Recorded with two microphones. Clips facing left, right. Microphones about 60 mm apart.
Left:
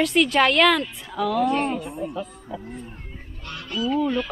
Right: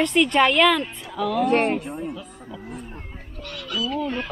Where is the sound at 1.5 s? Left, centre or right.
Right.